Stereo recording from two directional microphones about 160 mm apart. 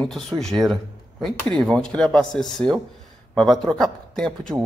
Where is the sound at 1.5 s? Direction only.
5° left (ahead or behind).